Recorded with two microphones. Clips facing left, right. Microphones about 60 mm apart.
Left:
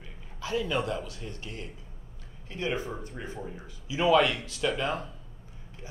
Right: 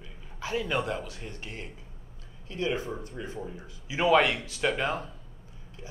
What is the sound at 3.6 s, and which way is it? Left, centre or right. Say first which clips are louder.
A man's voice: even; right.